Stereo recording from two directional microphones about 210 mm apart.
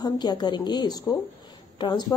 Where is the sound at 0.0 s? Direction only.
20° left (ahead or behind).